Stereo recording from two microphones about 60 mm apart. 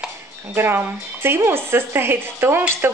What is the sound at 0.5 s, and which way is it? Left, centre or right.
Speech, right.